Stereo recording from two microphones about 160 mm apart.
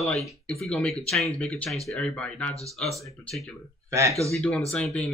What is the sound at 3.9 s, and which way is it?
Speech, 20° right (ahead or behind).